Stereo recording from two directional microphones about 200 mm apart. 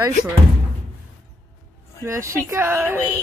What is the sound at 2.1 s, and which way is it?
Speech, 15° right (ahead or behind).